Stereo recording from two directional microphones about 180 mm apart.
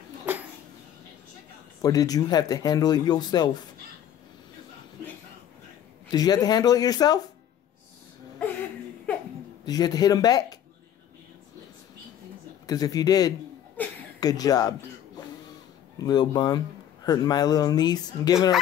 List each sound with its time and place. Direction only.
1.8 s speech: 20° left (ahead or behind)
6.0 s speech: 20° left (ahead or behind)
9.7 s speech: 20° left (ahead or behind)
12.6 s speech: 20° left (ahead or behind)
13.8 s a sound: 10° left (ahead or behind)
14.2 s speech: 20° left (ahead or behind)
16.0 s speech: 25° left (ahead or behind)